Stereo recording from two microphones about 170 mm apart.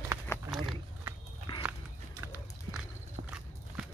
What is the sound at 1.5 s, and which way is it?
Horse, 20° left (ahead or behind).